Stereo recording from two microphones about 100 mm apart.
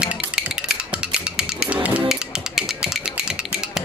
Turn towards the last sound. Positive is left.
turn(degrees=-5)  # may be behind; listen again after turning